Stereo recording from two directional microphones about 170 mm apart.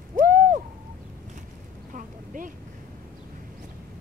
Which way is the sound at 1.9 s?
50° right (ahead or behind).